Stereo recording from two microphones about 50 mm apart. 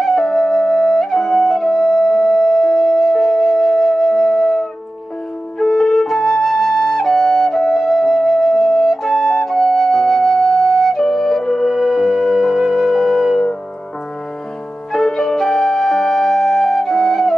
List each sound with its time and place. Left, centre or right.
0.0 s flute: centre
14.9 s music: centre